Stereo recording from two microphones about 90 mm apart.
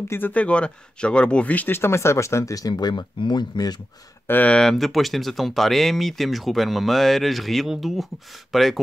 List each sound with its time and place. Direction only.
0.1 s speech: 20° left (ahead or behind); by 2.7 s 40° left (ahead or behind)
2.7 s speech: 55° left (ahead or behind)
4.3 s speech: 15° left (ahead or behind)